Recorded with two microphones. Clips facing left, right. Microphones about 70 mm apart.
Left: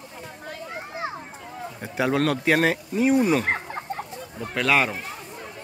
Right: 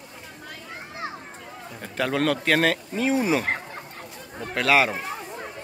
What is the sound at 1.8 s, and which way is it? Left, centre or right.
A man's voice, centre.